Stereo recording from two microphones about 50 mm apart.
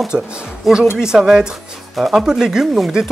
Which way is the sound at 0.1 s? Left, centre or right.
Right.